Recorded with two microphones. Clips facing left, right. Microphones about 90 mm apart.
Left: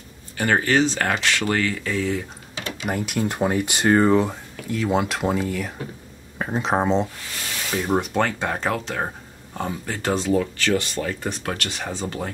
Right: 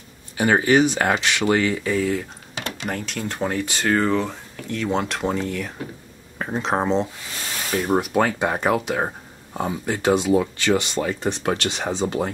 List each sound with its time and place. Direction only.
0.4 s speech: 15° right (ahead or behind)
2.9 s speech: 10° left (ahead or behind)
4.6 s speech: 5° left (ahead or behind); by 12.3 s 20° right (ahead or behind)